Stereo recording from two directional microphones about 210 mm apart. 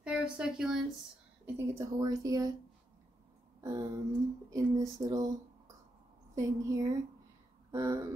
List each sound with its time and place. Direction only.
0.0 s speech: 5° right (ahead or behind)
3.6 s speech: 15° right (ahead or behind)
6.3 s speech: 15° right (ahead or behind)